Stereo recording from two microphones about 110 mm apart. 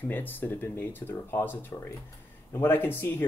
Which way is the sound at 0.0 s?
15° left (ahead or behind).